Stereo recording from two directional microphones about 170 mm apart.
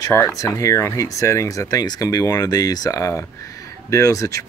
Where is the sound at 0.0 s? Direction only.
20° left (ahead or behind).